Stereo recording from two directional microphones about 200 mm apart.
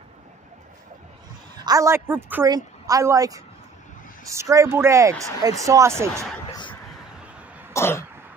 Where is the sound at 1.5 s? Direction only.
15° right (ahead or behind).